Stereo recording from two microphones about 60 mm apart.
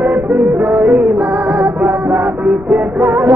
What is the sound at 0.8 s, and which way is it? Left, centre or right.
Music, centre.